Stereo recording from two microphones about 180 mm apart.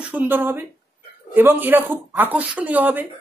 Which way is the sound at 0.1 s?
10° right (ahead or behind).